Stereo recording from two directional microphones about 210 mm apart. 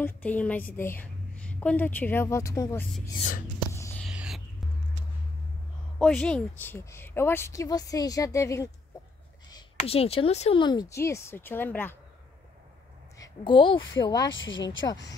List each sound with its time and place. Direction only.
0.0 s a woman's voice: 5° left (ahead or behind)
3.7 s a sound: 10° left (ahead or behind)
4.0 s a sound: 5° right (ahead or behind)
5.9 s a woman's voice: 5° left (ahead or behind)
9.8 s a woman's voice: 30° left (ahead or behind); by 12.0 s 10° left (ahead or behind)
13.2 s a woman's voice: 25° left (ahead or behind)
14.3 s speech: 65° left (ahead or behind)